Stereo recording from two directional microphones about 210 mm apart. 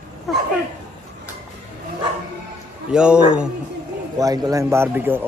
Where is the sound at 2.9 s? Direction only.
5° right (ahead or behind).